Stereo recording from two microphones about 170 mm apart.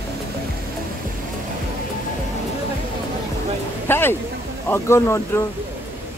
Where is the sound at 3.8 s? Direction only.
15° left (ahead or behind).